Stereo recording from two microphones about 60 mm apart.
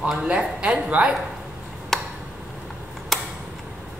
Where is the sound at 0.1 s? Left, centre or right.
Centre.